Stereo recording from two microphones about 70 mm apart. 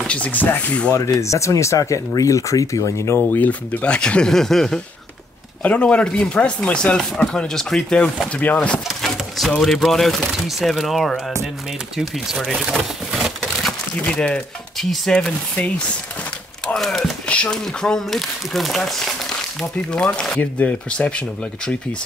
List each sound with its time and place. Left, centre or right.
0.0 s speech: centre
0.9 s speech: left
3.2 s speech: left; by 4.8 s centre
5.6 s speech: centre
8.3 s speech: left
9.6 s speech: centre
12.5 s a sound: centre
13.9 s speech: centre
16.6 s speech: centre